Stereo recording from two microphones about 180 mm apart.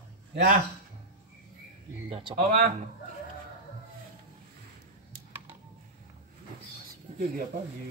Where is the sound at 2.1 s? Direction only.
30° right (ahead or behind).